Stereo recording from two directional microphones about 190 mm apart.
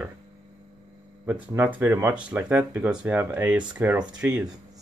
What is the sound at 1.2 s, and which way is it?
Speech, 10° right (ahead or behind).